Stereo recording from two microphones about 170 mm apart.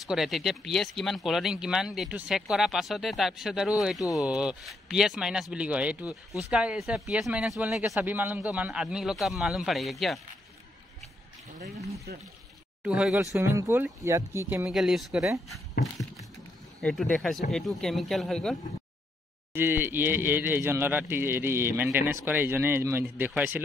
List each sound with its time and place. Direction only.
0.0 s speech: centre (ahead or behind)
12.1 s speech: 70° right (ahead or behind)
12.8 s speech: 5° right (ahead or behind)
13.4 s a man's voice: 15° right (ahead or behind)
14.7 s speech: centre (ahead or behind)
16.8 s speech: 5° left (ahead or behind)
19.5 s a man's voice: 15° right (ahead or behind)